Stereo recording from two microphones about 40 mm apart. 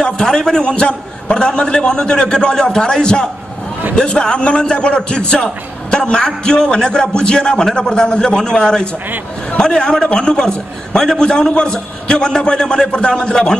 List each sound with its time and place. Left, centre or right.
0.0 s a man's voice: centre